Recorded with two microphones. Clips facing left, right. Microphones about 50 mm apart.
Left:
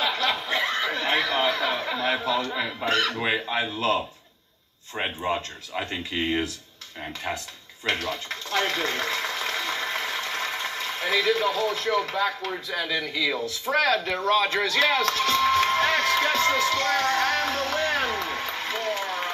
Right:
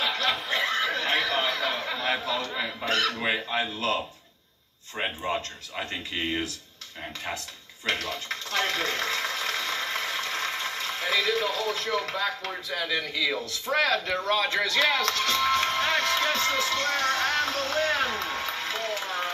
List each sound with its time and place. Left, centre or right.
0.0 s snicker: centre
2.8 s speech: left
4.9 s speech: centre
7.8 s speech: left
8.5 s a sound: left
11.3 s speech: left
13.7 s speech: left